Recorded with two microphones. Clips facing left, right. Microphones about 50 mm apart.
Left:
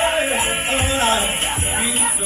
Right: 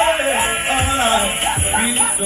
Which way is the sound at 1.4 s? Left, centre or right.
Centre.